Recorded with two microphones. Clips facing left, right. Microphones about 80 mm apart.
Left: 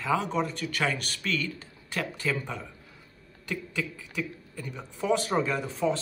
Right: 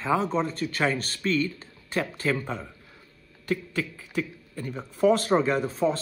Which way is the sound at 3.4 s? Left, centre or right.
Right.